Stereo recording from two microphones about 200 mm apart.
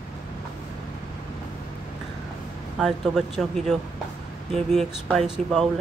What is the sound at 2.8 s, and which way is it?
Speech, centre (ahead or behind).